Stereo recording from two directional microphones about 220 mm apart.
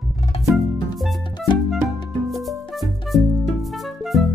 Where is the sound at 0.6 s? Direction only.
Centre (ahead or behind).